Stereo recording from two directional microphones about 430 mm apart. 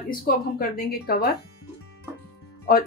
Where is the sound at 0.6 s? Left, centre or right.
Left.